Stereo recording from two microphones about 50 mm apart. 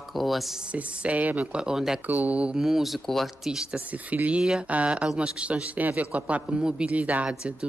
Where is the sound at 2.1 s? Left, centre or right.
Right.